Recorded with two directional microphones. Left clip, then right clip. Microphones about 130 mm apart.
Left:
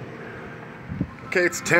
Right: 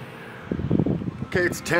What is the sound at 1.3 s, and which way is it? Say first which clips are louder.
Speech: left 3 dB; centre (ahead or behind).